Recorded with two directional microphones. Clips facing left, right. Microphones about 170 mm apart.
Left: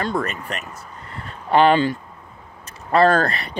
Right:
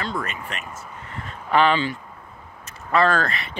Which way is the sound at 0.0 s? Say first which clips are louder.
Left 5 dB; 45° left (ahead or behind).